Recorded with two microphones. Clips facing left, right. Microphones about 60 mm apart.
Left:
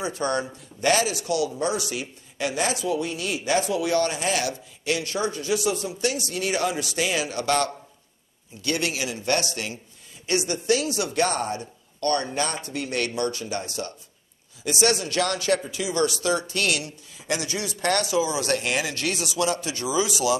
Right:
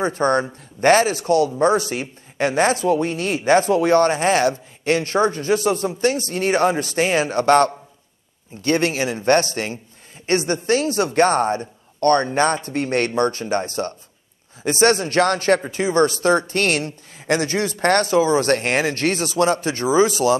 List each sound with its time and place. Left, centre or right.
0.0 s speech: right